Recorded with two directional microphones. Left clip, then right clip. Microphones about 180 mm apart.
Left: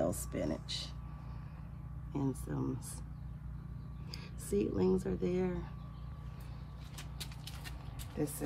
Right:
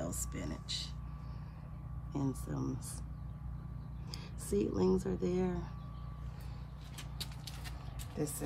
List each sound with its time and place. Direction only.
0.0 s speech: 10° right (ahead or behind)
2.1 s speech: 5° right (ahead or behind)
4.5 s speech: 5° right (ahead or behind)